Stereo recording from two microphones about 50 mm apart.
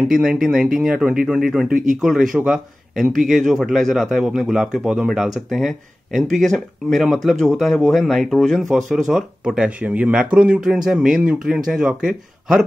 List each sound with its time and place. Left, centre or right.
0.1 s speech: centre
9.4 s speech: centre
9.7 s speech: right
10.6 s speech: centre